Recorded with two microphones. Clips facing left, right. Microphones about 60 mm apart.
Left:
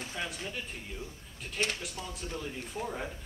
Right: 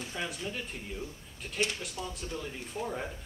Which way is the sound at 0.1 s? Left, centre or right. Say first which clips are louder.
Right 3 dB; centre.